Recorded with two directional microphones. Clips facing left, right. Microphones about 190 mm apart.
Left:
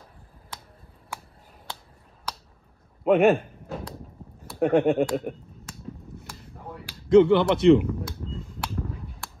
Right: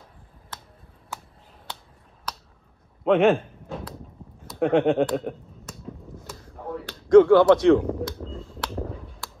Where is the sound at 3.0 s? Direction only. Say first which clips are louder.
Even; 10° left (ahead or behind).